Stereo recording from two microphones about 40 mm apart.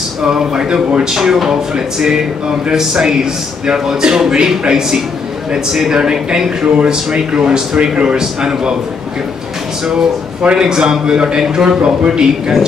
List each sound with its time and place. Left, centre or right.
0.2 s a man's voice: centre
10.5 s a man's voice: centre